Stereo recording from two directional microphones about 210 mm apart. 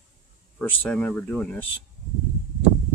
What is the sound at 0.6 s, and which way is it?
Speech, 5° left (ahead or behind).